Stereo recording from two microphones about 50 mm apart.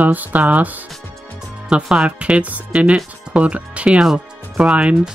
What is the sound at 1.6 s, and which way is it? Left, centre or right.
Speech, centre.